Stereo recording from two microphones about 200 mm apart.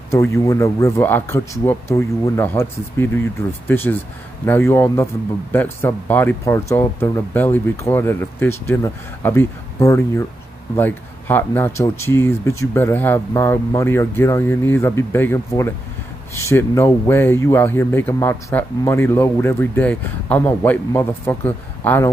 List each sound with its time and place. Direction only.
0.1 s speech: 15° left (ahead or behind)